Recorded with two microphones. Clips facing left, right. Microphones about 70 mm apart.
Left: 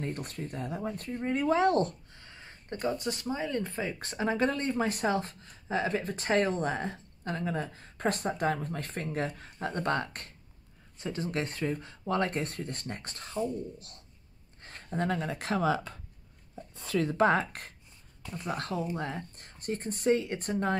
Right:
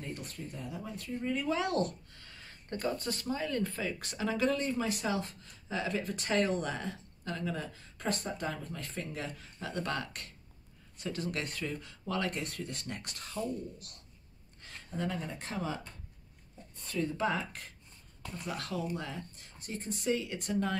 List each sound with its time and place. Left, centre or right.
0.0 s speech: left
2.1 s a sound: left
2.9 s speech: centre; by 7.6 s left
7.7 s speech: left
11.0 s speech: left
14.6 s speech: left
17.0 s speech: left
18.2 s speech: centre
18.5 s speech: left